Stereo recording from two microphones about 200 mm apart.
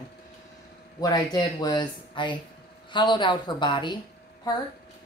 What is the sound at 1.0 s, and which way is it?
A woman's voice, 20° left (ahead or behind).